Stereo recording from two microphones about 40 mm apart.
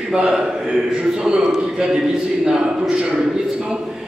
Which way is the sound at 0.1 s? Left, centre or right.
Centre.